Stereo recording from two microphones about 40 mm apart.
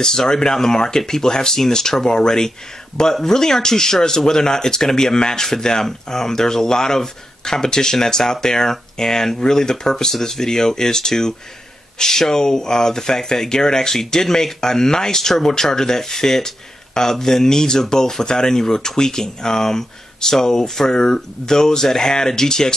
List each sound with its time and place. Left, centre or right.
0.0 s speech: centre